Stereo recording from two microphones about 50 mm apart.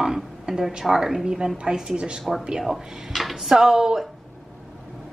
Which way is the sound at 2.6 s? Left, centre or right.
Centre.